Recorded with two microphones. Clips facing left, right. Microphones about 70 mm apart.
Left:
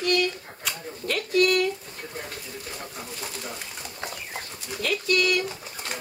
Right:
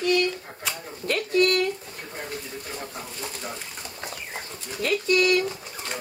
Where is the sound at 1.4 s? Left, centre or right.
Centre.